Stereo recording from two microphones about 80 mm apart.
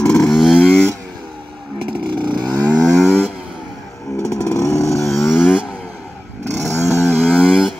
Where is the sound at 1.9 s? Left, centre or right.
Right.